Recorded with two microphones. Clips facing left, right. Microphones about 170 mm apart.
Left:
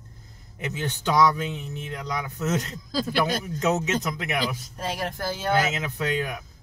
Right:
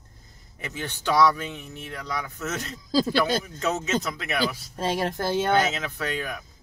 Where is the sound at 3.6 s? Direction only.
20° left (ahead or behind).